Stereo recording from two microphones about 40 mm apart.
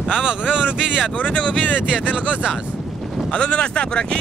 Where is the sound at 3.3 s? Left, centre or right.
Left.